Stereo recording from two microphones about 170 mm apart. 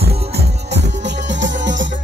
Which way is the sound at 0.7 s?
90° right.